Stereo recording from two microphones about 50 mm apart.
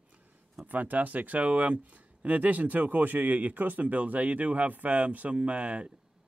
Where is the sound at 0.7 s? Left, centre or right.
Right.